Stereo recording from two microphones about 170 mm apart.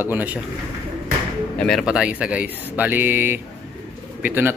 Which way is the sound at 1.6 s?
Centre (ahead or behind).